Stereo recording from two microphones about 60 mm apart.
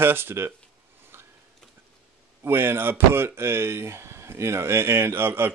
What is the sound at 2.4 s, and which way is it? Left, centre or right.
Speech, right.